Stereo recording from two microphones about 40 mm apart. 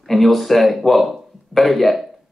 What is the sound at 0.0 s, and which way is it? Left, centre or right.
A man's voice, centre.